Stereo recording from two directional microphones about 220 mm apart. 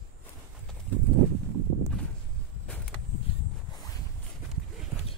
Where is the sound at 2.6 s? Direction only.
5° left (ahead or behind).